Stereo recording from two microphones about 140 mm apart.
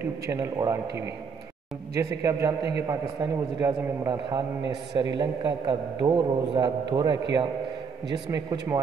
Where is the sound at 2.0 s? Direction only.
20° right (ahead or behind).